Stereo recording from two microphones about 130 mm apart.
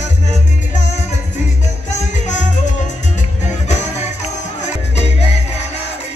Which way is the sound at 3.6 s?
60° left (ahead or behind).